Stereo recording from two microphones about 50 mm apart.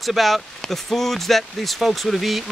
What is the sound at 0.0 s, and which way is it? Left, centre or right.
Speech, centre.